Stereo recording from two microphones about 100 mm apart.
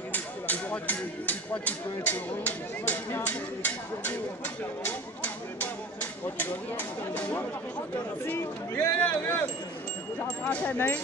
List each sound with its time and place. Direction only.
0.1 s speech: 15° left (ahead or behind)
7.2 s speech: 15° left (ahead or behind)